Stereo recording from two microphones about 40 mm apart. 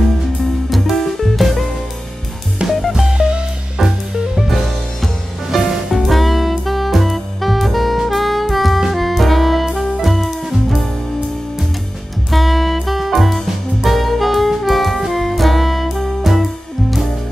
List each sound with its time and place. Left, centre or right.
0.7 s music: centre
2.9 s music: centre
4.5 s music: centre
12.3 s music: centre
13.8 s saxophone: centre